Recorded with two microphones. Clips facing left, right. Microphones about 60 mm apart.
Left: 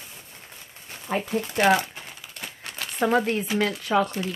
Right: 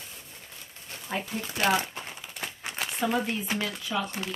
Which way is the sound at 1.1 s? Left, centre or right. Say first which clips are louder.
Left 6 dB; left.